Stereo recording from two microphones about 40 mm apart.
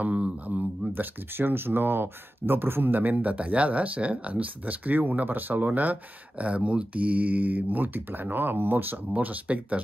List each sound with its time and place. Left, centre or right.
0.0 s speech: right
0.9 s speech: right
5.7 s speech: right
9.1 s speech: right